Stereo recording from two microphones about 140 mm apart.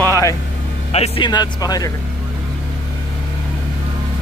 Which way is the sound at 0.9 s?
50° left (ahead or behind).